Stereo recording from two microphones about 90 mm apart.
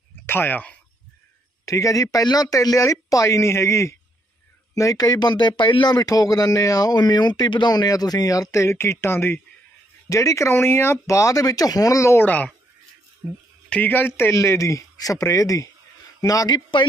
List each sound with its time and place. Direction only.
0.3 s speech: 25° left (ahead or behind)
1.7 s speech: 40° left (ahead or behind)
13.2 s speech: 30° right (ahead or behind)
13.7 s speech: 20° left (ahead or behind); by 16.8 s 50° left (ahead or behind)